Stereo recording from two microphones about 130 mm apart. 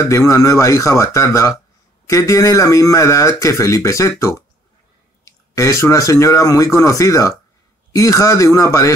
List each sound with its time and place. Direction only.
0.3 s speech: 25° left (ahead or behind)